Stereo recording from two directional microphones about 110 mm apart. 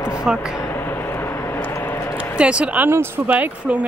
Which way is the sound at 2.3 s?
10° right (ahead or behind).